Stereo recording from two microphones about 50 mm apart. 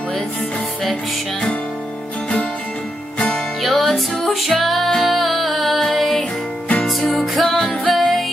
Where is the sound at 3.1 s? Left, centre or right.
Centre.